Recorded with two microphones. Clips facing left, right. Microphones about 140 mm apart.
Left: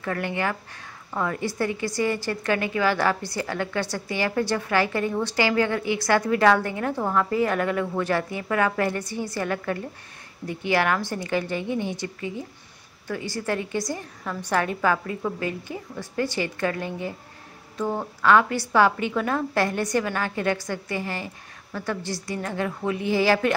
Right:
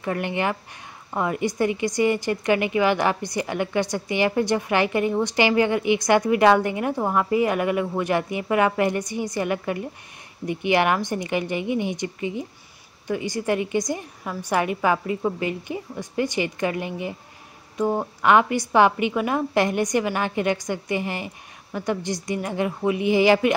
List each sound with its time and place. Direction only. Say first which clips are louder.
0.0 s speech: right 2 dB; 20° right (ahead or behind)